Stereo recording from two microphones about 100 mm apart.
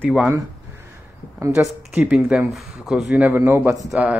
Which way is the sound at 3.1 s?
15° right (ahead or behind).